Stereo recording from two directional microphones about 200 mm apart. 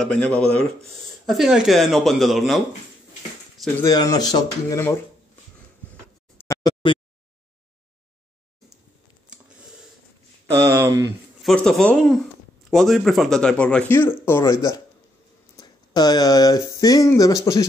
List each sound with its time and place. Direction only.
0.0 s speech: 5° left (ahead or behind)
3.8 s speech: 20° left (ahead or behind)
6.4 s a sound: 15° left (ahead or behind)
10.8 s speech: 15° right (ahead or behind)
11.4 s speech: 5° left (ahead or behind)